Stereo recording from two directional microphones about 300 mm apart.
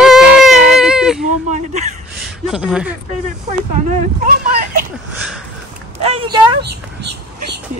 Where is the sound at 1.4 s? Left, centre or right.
Right.